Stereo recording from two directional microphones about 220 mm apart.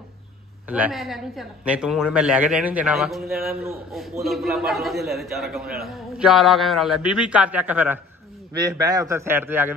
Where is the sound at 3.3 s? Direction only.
45° right (ahead or behind).